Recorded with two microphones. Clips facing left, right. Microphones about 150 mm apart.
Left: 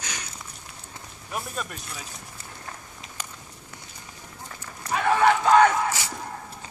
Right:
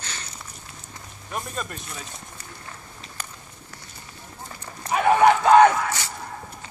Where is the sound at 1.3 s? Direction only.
5° left (ahead or behind).